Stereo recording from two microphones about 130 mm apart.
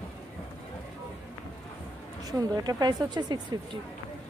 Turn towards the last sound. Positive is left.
turn(degrees=-35)  # may be behind; listen again after turning